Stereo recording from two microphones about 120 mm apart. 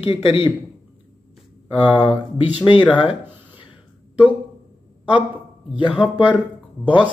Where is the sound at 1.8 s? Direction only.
45° left (ahead or behind).